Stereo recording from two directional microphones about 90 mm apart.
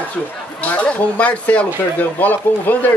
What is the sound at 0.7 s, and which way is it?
Speech, 15° left (ahead or behind).